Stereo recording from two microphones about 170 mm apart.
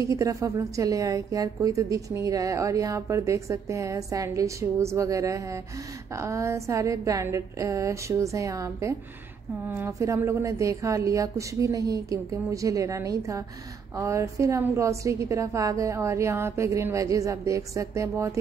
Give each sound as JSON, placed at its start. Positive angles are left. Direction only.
{"t": 0.0, "sound": "a woman's voice", "side_deg": -20}